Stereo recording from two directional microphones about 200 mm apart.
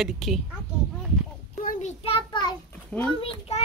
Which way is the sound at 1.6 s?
40° left (ahead or behind).